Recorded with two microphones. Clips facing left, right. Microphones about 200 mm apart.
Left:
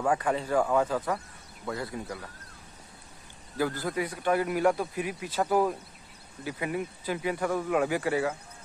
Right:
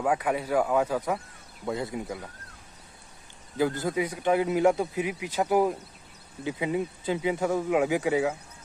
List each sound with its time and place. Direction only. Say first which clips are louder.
0.0 s a man's voice: right 1 dB; 5° right (ahead or behind)
3.5 s a man's voice: right 3 dB; 20° right (ahead or behind)